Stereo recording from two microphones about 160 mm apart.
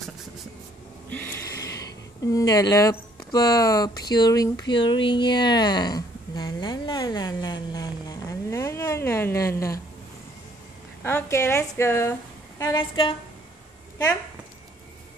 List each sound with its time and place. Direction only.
1.1 s a sound: 10° left (ahead or behind)
2.3 s speech: 20° left (ahead or behind)
11.1 s a woman's voice: 15° left (ahead or behind)